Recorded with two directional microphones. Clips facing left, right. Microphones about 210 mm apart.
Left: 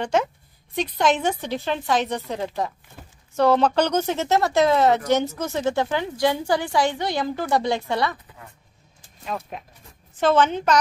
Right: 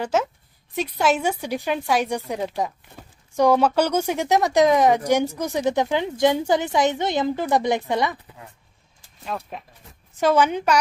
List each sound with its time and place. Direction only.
0.0 s speech: 5° right (ahead or behind)
9.2 s speech: centre (ahead or behind)
10.1 s speech: 10° right (ahead or behind)